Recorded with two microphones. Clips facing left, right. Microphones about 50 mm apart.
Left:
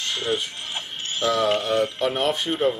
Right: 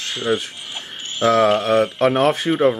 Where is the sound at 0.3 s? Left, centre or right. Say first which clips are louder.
Right 8 dB; right.